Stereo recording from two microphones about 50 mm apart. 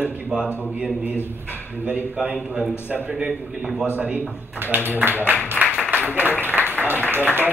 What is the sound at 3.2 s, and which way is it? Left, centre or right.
Speech, centre.